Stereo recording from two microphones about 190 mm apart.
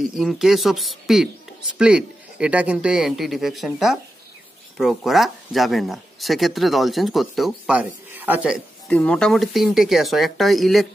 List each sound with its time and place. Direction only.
0.0 s speech: centre (ahead or behind)
8.8 s speech: 5° left (ahead or behind)